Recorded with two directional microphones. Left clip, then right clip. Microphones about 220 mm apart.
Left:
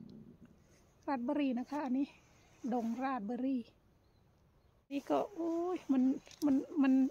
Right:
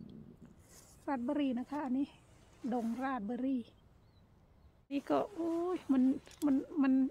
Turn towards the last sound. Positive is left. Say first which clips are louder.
# left 1 dB
turn(degrees=5)  # may be behind; listen again after turning